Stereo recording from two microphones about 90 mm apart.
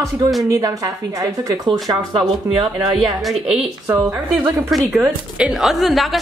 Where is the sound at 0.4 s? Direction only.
35° right (ahead or behind).